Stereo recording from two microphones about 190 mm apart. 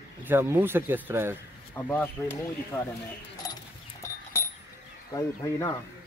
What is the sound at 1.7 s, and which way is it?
Speech, 10° left (ahead or behind).